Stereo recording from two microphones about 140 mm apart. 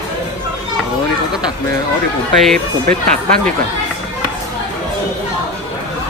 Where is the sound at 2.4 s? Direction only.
5° left (ahead or behind).